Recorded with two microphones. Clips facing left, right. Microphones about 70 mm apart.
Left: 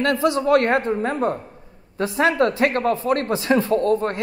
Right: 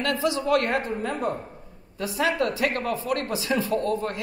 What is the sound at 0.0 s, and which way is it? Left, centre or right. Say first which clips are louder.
A man's voice: left 6 dB; left.